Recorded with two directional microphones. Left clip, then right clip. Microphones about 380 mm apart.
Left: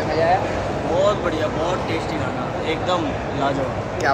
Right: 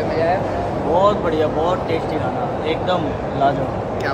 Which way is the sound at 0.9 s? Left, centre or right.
Centre.